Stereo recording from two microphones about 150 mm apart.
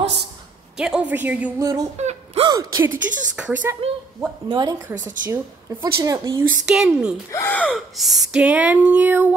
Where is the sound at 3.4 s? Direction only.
10° right (ahead or behind).